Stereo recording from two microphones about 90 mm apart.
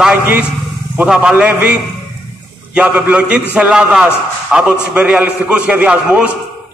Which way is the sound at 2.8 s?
15° right (ahead or behind).